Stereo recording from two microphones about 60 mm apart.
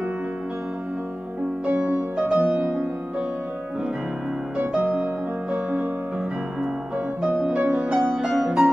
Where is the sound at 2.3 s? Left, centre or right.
Right.